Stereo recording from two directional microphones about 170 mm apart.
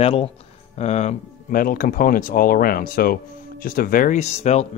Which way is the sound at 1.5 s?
55° left (ahead or behind).